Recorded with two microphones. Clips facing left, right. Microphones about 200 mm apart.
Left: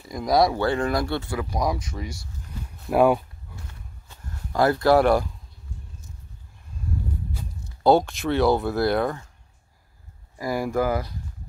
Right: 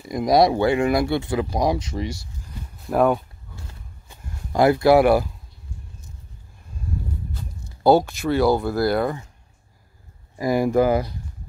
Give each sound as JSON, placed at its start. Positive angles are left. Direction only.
{"t": 0.1, "sound": "speech", "side_deg": -20}
{"t": 2.9, "sound": "speech", "side_deg": 5}
{"t": 4.1, "sound": "speech", "side_deg": -15}
{"t": 7.8, "sound": "speech", "side_deg": -5}
{"t": 10.3, "sound": "speech", "side_deg": -20}